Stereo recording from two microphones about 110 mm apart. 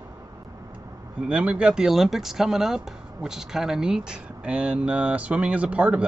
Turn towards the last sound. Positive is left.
turn(degrees=-10)  # may be behind; listen again after turning